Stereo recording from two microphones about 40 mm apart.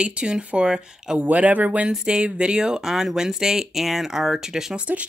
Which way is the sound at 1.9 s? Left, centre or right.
Right.